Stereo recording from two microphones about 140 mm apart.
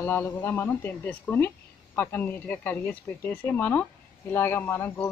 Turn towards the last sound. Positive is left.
turn(degrees=15)  # may be behind; listen again after turning